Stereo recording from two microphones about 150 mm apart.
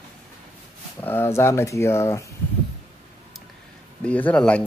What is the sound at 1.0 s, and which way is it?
Speech, 15° left (ahead or behind).